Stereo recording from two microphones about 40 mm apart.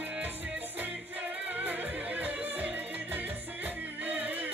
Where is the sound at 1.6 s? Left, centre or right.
Right.